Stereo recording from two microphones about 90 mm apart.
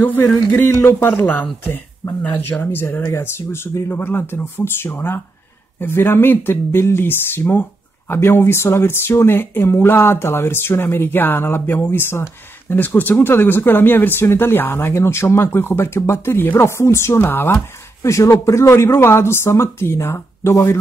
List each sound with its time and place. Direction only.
0.0 s speech: 25° left (ahead or behind)
18.0 s speech: 35° left (ahead or behind)